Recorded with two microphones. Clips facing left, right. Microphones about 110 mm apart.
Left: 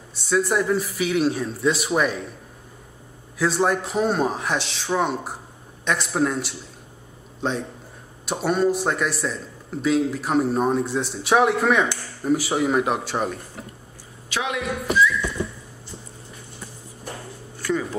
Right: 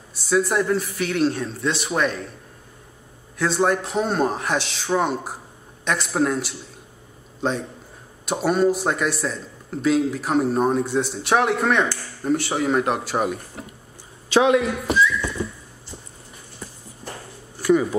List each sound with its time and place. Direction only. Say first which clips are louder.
0.1 s a man's voice: right 1 dB; centre (ahead or behind)
3.3 s a man's voice: right 1 dB; centre (ahead or behind)
14.3 s a man's voice: right 11 dB; 30° right (ahead or behind)
17.6 s a sound: right 7 dB; 15° right (ahead or behind)